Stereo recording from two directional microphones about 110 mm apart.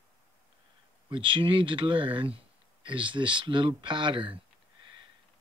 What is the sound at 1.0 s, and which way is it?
Speech, 50° right (ahead or behind).